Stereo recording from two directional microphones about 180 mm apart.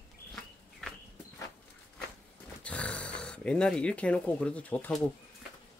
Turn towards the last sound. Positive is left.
turn(degrees=10)  # may be behind; listen again after turning